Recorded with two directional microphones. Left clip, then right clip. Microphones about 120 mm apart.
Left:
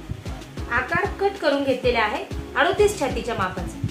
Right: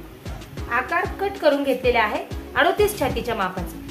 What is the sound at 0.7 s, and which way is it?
Speech, centre (ahead or behind).